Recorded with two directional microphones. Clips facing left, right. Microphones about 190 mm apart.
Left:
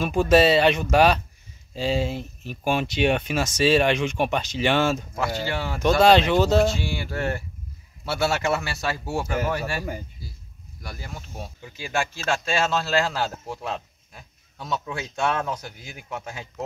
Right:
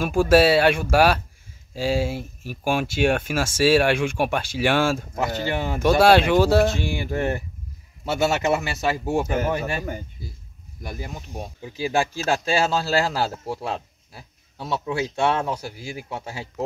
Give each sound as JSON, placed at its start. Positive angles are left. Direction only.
{"t": 0.0, "sound": "a man's voice", "side_deg": -10}
{"t": 11.8, "sound": "a man's voice", "side_deg": -35}